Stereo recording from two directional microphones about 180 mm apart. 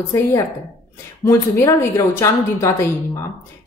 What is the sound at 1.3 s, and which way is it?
A woman's voice, 15° left (ahead or behind).